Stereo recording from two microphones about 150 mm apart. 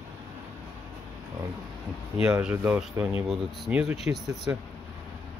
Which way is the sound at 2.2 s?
10° right (ahead or behind).